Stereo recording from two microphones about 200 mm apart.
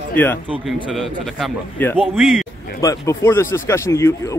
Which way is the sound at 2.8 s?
15° left (ahead or behind).